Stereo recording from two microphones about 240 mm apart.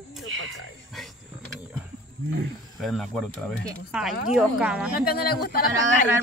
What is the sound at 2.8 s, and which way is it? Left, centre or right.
Speech, centre.